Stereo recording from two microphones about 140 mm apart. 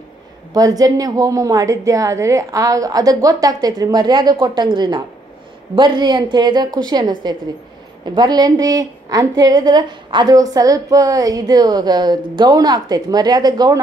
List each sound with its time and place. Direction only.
0.5 s a woman's voice: 25° right (ahead or behind)